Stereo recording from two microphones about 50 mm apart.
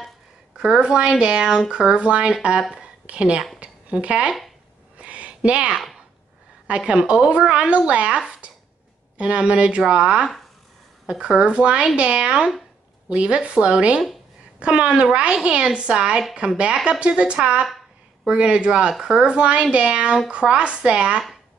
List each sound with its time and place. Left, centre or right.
0.6 s a woman's voice: centre
4.9 s a sound: right
6.7 s speech: centre
9.2 s speech: right